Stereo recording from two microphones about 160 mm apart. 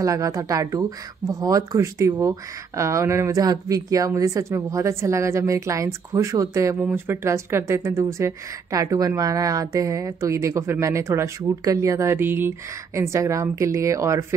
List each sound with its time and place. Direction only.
0.0 s speech: 20° right (ahead or behind)